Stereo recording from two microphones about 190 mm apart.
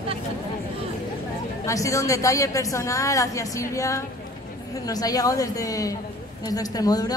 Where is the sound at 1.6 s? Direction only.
15° left (ahead or behind).